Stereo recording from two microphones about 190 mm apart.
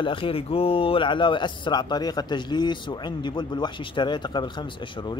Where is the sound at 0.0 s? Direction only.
25° left (ahead or behind).